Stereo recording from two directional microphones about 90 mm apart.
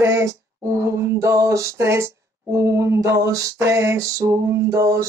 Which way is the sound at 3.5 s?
30° right (ahead or behind).